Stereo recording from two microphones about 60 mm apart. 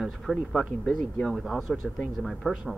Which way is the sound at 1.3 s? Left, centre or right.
Centre.